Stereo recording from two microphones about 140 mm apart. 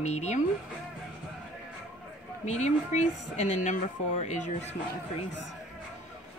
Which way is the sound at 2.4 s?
55° left (ahead or behind).